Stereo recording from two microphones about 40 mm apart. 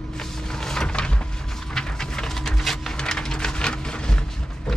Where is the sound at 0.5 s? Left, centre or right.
Centre.